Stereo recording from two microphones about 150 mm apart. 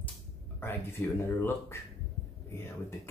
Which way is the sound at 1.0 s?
15° left (ahead or behind).